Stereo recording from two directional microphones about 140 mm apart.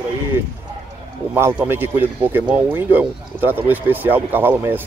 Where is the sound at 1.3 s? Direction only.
15° right (ahead or behind).